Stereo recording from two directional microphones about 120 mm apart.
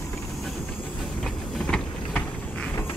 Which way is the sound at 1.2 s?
10° left (ahead or behind).